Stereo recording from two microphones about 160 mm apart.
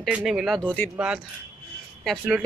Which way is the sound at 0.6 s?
10° left (ahead or behind).